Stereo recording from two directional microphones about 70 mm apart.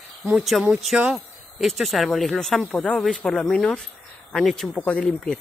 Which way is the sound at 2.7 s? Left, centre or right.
Centre.